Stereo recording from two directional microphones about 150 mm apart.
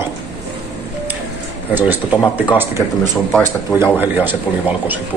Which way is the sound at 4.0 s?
10° right (ahead or behind).